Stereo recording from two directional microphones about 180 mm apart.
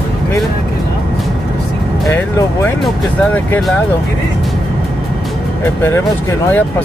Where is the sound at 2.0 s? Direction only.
15° left (ahead or behind).